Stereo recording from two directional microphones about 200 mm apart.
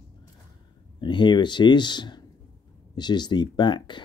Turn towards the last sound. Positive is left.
turn(degrees=20)  # may be behind; listen again after turning